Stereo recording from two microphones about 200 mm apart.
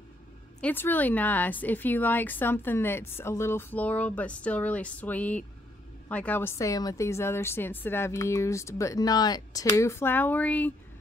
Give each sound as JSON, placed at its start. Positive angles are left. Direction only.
{"t": 0.6, "sound": "speech", "side_deg": 10}